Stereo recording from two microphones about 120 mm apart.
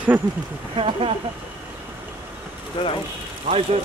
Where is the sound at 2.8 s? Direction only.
40° left (ahead or behind).